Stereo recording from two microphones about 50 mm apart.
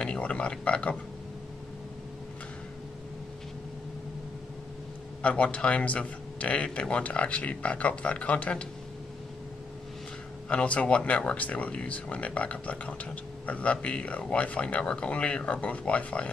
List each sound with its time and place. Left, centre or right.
0.0 s a man's voice: left
5.2 s speech: left
10.5 s speech: left